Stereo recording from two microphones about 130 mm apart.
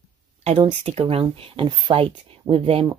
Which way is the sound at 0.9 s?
50° right (ahead or behind).